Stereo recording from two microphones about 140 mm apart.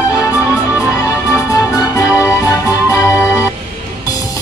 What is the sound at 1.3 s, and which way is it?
Music, 20° left (ahead or behind).